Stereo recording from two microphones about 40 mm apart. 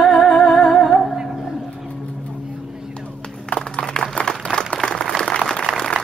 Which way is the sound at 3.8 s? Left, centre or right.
Centre.